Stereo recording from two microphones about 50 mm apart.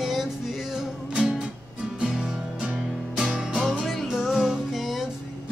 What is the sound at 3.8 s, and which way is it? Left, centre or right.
Music, centre.